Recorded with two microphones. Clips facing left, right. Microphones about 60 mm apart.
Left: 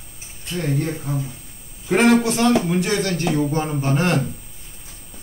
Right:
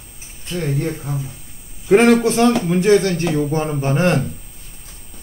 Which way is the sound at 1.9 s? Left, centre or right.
Right.